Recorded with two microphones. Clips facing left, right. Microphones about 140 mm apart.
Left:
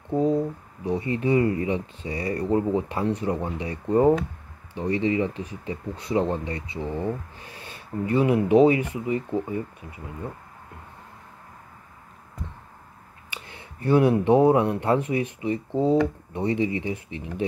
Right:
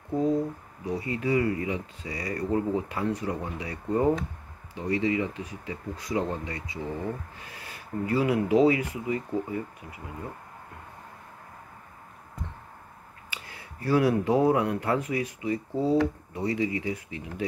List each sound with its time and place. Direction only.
0.8 s speech: 30° left (ahead or behind)
13.3 s a sound: 25° left (ahead or behind)
13.8 s speech: 25° left (ahead or behind)